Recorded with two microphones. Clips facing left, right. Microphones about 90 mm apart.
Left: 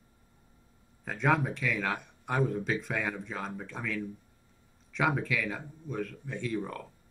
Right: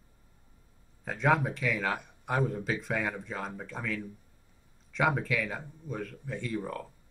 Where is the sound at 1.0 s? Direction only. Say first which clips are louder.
Right 1 dB; centre (ahead or behind).